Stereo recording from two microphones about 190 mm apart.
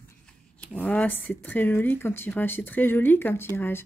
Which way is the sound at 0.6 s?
10° left (ahead or behind).